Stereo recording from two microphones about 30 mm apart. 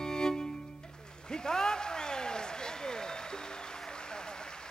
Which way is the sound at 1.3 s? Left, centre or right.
Left.